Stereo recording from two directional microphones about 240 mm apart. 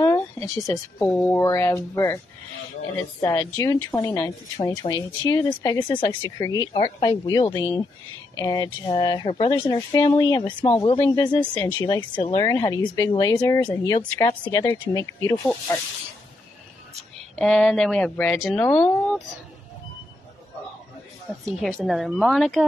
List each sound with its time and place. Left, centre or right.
0.0 s speech: centre
17.4 s speech: centre
21.5 s speech: centre